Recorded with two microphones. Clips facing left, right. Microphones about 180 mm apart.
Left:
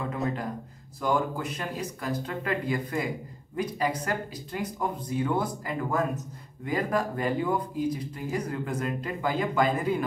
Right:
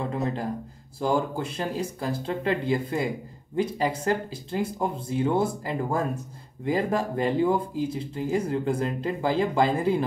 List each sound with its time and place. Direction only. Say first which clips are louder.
1.0 s speech: right 2 dB; 30° right (ahead or behind)